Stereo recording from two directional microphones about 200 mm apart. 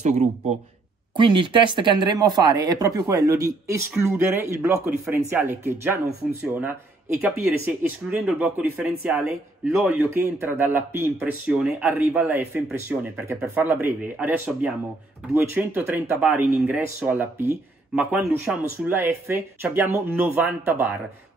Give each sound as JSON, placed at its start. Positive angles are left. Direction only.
{"t": 1.1, "sound": "speech", "side_deg": -25}